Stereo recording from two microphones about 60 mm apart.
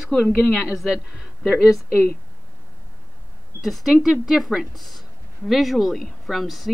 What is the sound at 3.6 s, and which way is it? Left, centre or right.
A woman's voice, centre.